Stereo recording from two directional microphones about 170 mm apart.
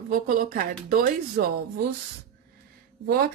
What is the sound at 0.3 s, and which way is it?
Speech, 55° right (ahead or behind).